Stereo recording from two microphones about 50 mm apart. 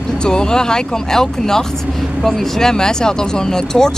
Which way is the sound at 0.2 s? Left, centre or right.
Centre.